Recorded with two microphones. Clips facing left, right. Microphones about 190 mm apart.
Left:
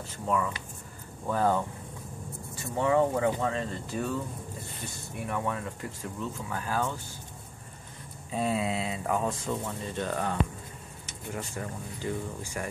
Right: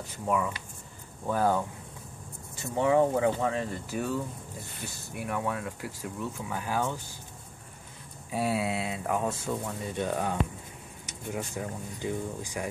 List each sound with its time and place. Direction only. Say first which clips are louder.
0.0 s speech: even; 10° right (ahead or behind)
2.7 s speech: right 1 dB; 10° right (ahead or behind)
8.3 s speech: even; 10° right (ahead or behind)